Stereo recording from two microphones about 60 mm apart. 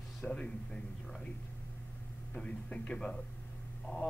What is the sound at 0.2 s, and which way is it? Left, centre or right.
Speech, centre.